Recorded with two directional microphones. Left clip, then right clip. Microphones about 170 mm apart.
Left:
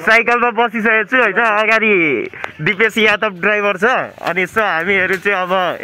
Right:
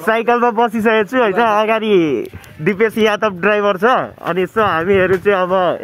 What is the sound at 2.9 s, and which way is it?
Speech, 5° right (ahead or behind).